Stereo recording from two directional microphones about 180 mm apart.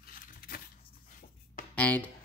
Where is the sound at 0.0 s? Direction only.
55° left (ahead or behind).